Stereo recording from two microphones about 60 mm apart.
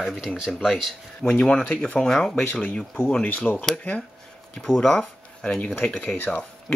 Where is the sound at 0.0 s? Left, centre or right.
Centre.